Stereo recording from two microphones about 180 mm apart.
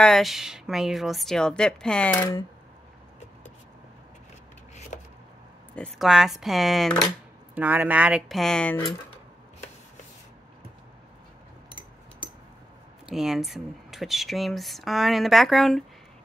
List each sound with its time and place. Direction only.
0.0 s speech: centre (ahead or behind)
5.8 s speech: centre (ahead or behind)
7.5 s speech: 10° right (ahead or behind); by 8.9 s 10° left (ahead or behind)
12.2 s a sound: 25° left (ahead or behind)
13.1 s speech: centre (ahead or behind)